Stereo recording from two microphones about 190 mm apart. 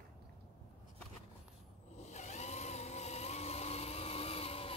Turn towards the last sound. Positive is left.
turn(degrees=30)  # may be behind; listen again after turning